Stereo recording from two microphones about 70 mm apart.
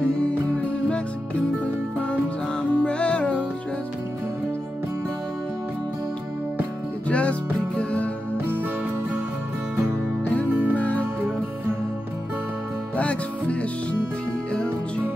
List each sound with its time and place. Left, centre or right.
0.0 s music: centre
2.7 s music: centre
7.1 s music: centre
10.5 s music: right
10.8 s music: left
12.9 s music: centre